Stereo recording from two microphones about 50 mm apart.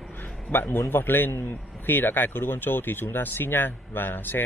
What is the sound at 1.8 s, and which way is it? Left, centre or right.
Speech, left.